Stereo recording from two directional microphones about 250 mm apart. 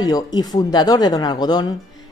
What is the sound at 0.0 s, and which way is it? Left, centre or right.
A woman's voice, centre.